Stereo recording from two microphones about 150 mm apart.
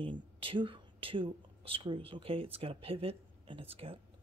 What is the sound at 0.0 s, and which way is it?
Speech, 35° right (ahead or behind).